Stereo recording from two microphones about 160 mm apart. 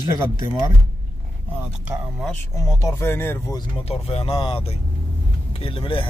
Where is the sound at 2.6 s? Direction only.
20° left (ahead or behind).